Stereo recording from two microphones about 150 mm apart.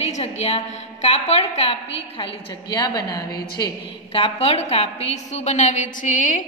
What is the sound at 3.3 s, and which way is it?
Speech, 90° left.